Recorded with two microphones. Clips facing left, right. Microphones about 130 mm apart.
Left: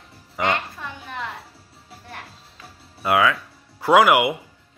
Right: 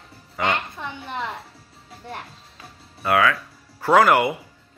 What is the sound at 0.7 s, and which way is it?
Speech, 25° right (ahead or behind).